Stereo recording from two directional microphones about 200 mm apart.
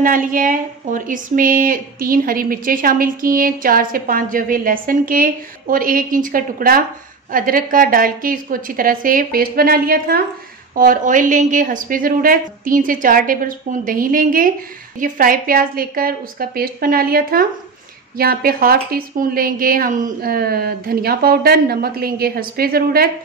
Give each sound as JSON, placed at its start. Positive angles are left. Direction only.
{"t": 0.0, "sound": "speech", "side_deg": -45}